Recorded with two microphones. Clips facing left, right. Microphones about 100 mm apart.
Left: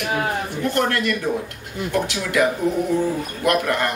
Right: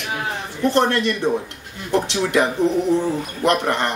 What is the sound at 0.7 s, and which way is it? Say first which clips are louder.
A man's voice: right 4 dB; 25° right (ahead or behind).